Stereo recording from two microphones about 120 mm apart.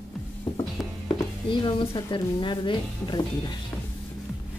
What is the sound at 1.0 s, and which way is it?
Speech, 40° left (ahead or behind).